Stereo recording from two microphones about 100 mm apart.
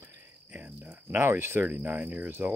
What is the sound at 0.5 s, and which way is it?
Speech, 15° right (ahead or behind).